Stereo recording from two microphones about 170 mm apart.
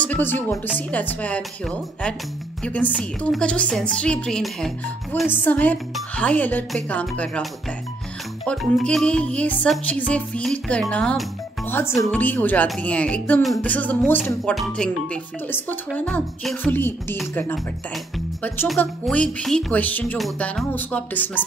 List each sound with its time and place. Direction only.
0.0 s a woman's voice: 10° left (ahead or behind)
0.7 s music: 10° left (ahead or behind)
3.0 s speech: 5° left (ahead or behind)
5.3 s music: 10° left (ahead or behind)
8.5 s music: 5° left (ahead or behind)
18.8 s music: 5° left (ahead or behind)